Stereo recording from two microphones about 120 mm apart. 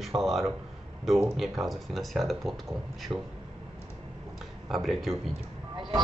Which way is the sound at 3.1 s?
25° right (ahead or behind).